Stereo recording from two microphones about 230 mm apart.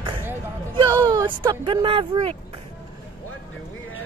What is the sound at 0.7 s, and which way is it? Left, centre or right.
Speech, centre.